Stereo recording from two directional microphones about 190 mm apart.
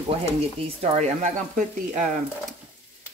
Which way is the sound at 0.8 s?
35° right (ahead or behind).